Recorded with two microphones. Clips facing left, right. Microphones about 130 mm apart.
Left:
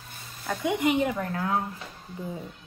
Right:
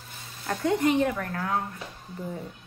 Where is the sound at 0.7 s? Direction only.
15° left (ahead or behind).